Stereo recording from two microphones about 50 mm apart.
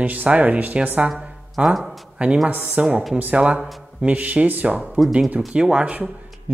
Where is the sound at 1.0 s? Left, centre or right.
Centre.